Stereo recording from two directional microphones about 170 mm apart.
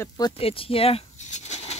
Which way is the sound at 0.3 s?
35° left (ahead or behind).